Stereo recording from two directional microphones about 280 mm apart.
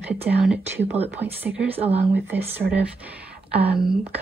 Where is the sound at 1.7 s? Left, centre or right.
Right.